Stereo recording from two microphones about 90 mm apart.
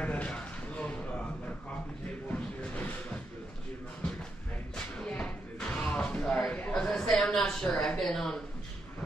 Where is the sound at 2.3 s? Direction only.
15° left (ahead or behind).